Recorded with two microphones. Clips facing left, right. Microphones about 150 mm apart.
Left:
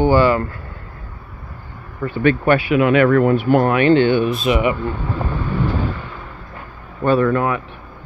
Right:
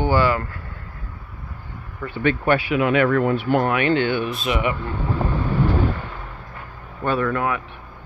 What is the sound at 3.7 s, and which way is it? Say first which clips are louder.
Speech: left 6 dB; 30° left (ahead or behind).